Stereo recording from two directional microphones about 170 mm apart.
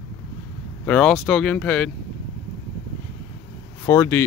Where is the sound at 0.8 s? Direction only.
5° left (ahead or behind).